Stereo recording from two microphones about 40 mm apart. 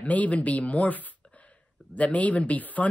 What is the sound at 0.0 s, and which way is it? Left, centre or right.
Speech, left.